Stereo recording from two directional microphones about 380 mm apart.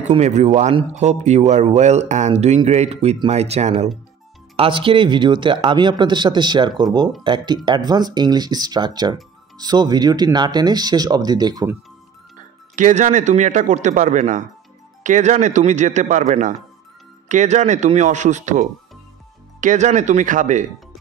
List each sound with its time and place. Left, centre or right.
0.1 s speech: centre
12.7 s a man's voice: centre